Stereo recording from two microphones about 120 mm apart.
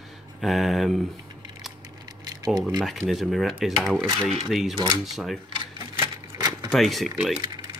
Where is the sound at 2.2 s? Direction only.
35° right (ahead or behind).